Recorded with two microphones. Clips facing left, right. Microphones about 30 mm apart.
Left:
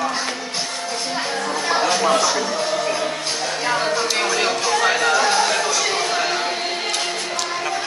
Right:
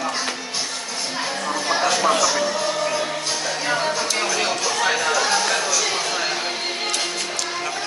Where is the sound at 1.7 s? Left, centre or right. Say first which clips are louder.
Left 1 dB; centre.